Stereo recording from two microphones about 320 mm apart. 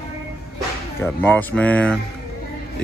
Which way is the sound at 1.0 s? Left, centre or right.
Centre.